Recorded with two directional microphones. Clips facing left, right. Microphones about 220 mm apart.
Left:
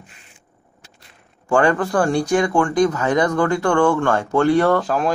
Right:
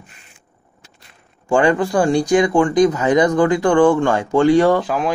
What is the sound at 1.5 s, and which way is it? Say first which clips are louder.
Speech: right 2 dB; 15° right (ahead or behind).